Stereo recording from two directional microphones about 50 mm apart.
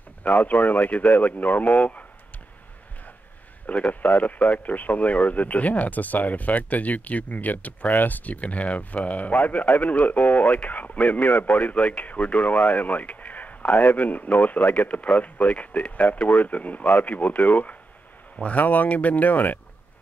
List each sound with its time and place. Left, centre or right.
0.2 s speech: left
3.6 s speech: left